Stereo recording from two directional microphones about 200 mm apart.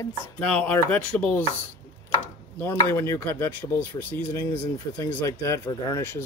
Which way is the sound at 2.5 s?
10° left (ahead or behind).